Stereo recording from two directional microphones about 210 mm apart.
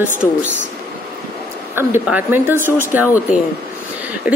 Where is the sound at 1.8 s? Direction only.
10° right (ahead or behind).